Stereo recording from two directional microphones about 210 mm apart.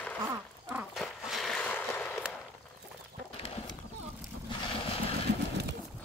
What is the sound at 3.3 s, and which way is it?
Clip-clop, 25° left (ahead or behind).